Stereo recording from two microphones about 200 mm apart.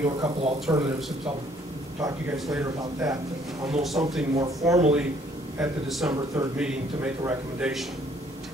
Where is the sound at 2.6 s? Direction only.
15° right (ahead or behind).